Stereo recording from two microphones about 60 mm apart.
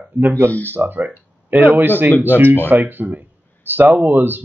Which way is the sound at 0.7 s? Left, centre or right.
Right.